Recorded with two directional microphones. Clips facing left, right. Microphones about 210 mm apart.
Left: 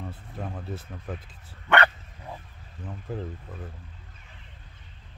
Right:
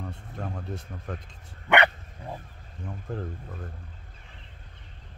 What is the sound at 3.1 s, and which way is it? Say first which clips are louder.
Speech: left 1 dB; 5° left (ahead or behind).